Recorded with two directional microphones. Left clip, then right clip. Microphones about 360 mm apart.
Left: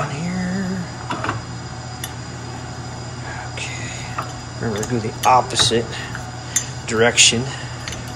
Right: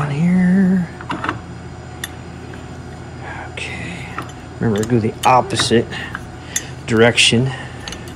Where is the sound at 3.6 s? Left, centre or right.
Right.